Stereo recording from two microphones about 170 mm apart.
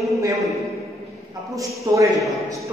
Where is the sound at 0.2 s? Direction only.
20° right (ahead or behind).